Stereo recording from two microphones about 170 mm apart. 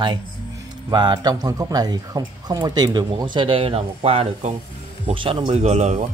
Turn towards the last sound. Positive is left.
turn(degrees=-40)  # may be behind; listen again after turning